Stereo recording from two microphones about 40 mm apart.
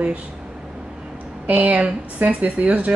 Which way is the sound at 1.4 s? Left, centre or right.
Right.